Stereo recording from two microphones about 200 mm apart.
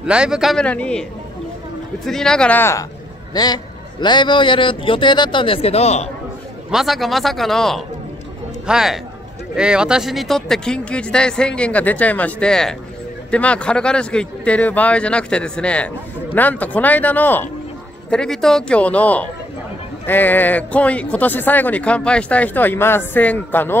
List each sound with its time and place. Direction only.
0.0 s speech: 5° right (ahead or behind)
2.0 s a man's voice: 5° left (ahead or behind); by 6.0 s 30° left (ahead or behind)
6.7 s speech: centre (ahead or behind)